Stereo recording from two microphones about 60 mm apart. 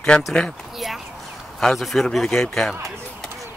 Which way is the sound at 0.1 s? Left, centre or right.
Centre.